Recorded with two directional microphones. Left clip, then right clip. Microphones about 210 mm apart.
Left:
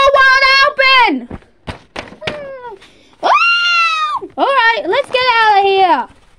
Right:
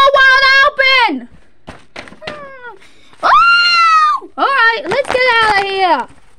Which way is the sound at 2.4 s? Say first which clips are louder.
Left 3 dB; 20° right (ahead or behind).